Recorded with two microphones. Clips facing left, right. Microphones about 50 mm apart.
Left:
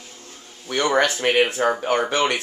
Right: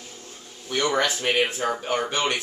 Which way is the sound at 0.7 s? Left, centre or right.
Left.